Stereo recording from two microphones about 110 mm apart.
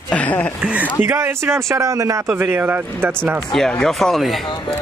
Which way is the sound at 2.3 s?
15° right (ahead or behind).